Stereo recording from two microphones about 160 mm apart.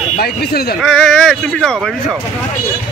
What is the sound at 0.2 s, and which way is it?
Speech, 75° left (ahead or behind).